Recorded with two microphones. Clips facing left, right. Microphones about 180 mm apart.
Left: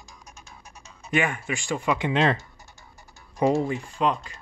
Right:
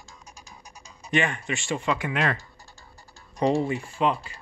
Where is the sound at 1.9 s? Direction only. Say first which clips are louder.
Left 5 dB; 25° left (ahead or behind).